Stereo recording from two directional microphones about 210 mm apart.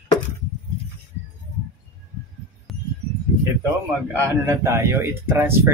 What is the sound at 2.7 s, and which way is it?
Music, centre (ahead or behind).